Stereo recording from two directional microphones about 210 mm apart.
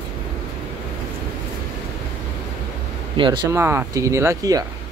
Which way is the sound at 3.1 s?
25° right (ahead or behind).